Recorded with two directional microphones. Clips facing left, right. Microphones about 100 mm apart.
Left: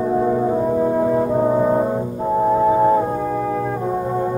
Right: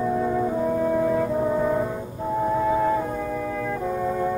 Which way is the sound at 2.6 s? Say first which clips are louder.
Left 7 dB; 35° left (ahead or behind).